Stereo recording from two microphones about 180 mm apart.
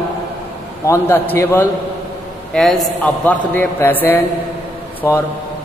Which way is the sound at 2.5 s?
5° left (ahead or behind).